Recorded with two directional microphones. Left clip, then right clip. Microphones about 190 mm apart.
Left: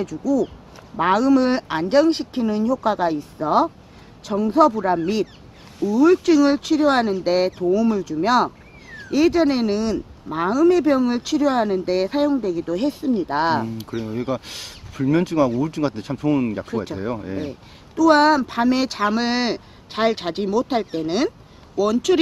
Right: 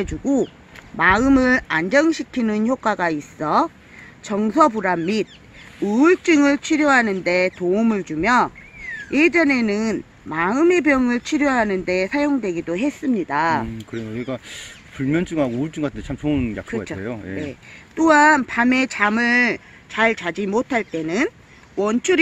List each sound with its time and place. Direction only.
0.0 s speech: 35° right (ahead or behind)
13.7 s speech: 10° left (ahead or behind)
17.9 s speech: 35° right (ahead or behind)